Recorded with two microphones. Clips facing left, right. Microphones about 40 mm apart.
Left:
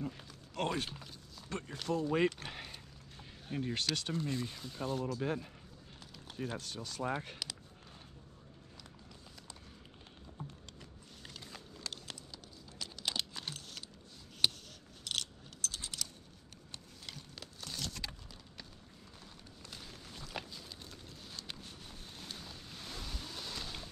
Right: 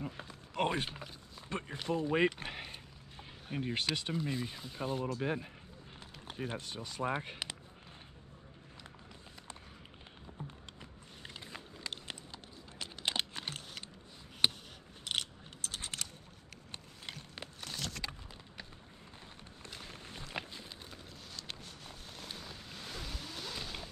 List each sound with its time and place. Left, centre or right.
0.0 s speech: right
10.8 s a sound: right
12.7 s computer keyboard: right
14.4 s scissors: right
15.0 s a sound: right
19.7 s walk: right
22.2 s ocean: centre
23.4 s vehicle: centre